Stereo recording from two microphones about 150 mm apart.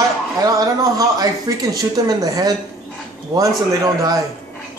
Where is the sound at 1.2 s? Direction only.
25° right (ahead or behind).